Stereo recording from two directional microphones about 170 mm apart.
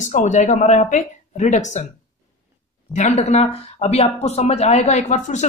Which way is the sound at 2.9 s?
45° left (ahead or behind).